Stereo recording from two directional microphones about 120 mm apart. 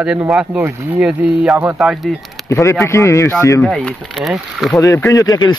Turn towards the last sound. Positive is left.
turn(degrees=30)  # may be behind; listen again after turning